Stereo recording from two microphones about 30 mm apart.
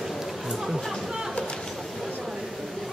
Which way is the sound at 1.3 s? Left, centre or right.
Left.